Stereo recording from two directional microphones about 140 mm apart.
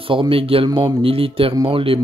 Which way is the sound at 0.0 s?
40° right (ahead or behind).